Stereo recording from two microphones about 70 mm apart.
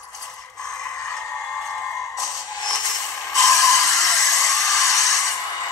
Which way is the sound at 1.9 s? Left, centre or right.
Left.